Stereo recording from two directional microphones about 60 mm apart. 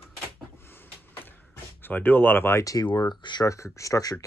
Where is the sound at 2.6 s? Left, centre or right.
Left.